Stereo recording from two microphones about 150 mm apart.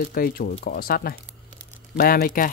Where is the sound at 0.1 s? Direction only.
80° left.